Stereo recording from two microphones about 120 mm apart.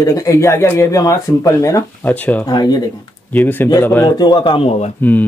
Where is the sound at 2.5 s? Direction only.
35° left (ahead or behind).